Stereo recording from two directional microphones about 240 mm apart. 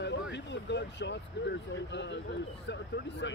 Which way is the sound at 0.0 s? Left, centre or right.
Left.